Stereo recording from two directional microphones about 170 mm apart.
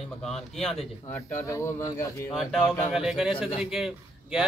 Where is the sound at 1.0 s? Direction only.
15° left (ahead or behind).